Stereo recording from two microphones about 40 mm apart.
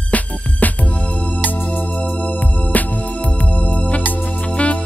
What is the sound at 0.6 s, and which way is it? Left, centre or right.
Music, left.